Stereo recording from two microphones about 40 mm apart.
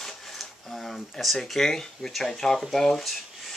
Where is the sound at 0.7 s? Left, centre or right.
Centre.